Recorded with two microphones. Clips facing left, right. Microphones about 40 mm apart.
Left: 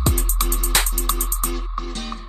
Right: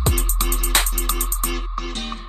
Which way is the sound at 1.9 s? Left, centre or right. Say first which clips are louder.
Right 1 dB; right.